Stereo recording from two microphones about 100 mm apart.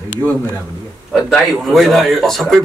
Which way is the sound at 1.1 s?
Centre (ahead or behind).